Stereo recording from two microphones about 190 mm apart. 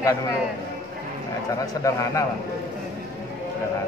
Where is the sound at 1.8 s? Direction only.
15° left (ahead or behind).